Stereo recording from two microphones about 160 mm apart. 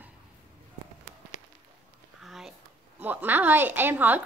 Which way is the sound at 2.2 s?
Centre (ahead or behind).